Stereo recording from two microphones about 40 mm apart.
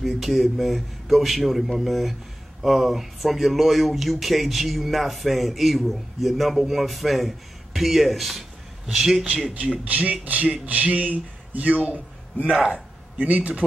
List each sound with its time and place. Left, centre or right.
0.2 s a man's voice: centre
9.8 s speech: right